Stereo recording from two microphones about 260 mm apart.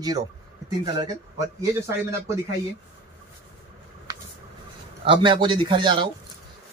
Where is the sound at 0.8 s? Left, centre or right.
Centre.